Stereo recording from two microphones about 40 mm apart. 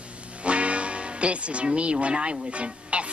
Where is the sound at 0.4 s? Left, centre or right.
Right.